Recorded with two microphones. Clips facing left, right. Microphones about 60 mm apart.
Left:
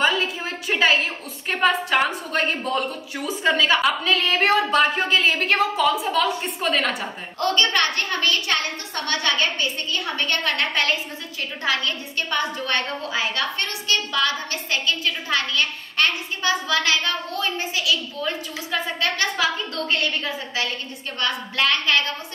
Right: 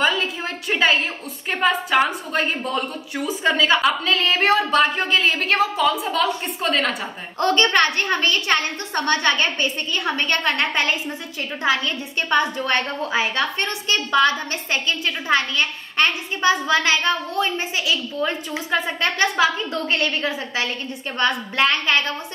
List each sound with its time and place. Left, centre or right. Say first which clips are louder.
0.0 s a sound: right 1 dB; centre
1.5 s a woman's voice: right 1 dB; centre
7.3 s a woman's voice: right 4 dB; right